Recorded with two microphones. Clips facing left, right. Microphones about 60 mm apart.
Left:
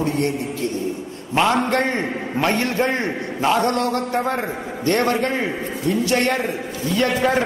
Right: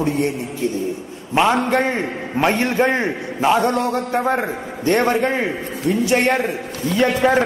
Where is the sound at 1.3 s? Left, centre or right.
Centre.